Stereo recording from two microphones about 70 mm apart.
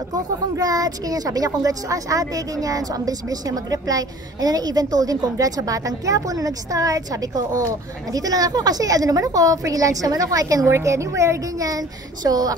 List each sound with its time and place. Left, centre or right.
0.1 s a woman's voice: right